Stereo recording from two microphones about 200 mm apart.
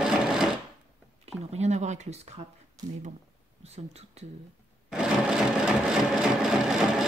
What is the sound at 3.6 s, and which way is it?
Speech, 30° right (ahead or behind).